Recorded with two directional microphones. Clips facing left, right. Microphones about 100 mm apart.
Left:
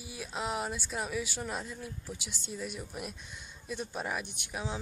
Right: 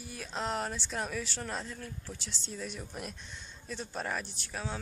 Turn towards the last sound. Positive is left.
turn(degrees=15)  # may be behind; listen again after turning